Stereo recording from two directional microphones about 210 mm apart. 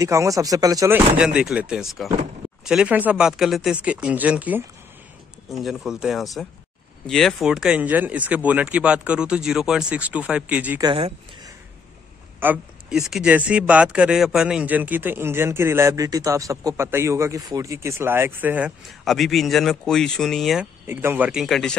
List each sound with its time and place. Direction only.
0.0 s speech: 15° right (ahead or behind)
10.8 s speech: 25° right (ahead or behind)
12.4 s speech: 10° right (ahead or behind)
20.8 s speech: 10° right (ahead or behind)